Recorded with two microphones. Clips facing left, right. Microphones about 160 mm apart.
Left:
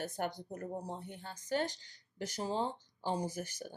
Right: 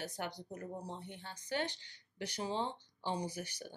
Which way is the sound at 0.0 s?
50° left (ahead or behind).